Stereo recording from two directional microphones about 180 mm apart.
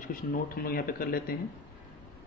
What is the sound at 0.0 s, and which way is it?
Speech, 50° left (ahead or behind).